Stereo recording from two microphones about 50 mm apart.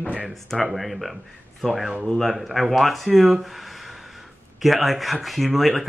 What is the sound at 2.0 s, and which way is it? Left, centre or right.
Speech, centre.